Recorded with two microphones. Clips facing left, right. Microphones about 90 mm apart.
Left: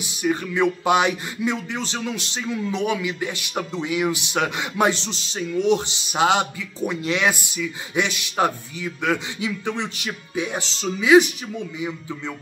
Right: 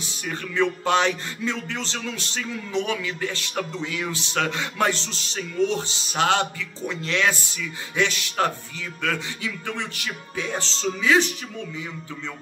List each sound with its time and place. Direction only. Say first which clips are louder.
0.0 s music: left 8 dB; 15° left (ahead or behind)